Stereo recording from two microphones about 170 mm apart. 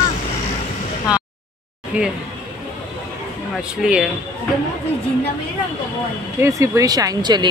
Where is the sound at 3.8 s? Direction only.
5° right (ahead or behind).